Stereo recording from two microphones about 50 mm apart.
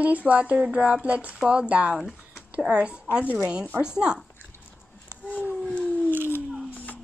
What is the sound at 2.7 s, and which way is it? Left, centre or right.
Speech, right.